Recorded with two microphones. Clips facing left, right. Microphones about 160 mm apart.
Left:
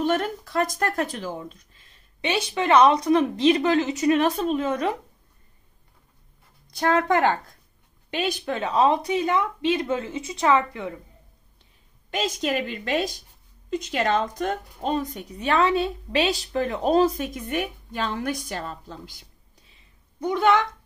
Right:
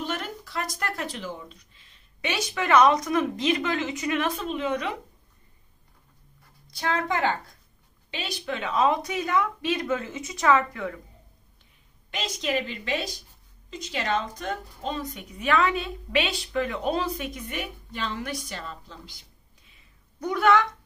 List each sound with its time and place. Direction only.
0.0 s speech: 45° left (ahead or behind)
2.2 s a woman's voice: 30° left (ahead or behind)
6.8 s speech: 55° left (ahead or behind); by 11.0 s 25° left (ahead or behind)
12.1 s a woman's voice: 45° left (ahead or behind)
15.3 s a woman's voice: 35° left (ahead or behind)
20.2 s speech: 25° left (ahead or behind)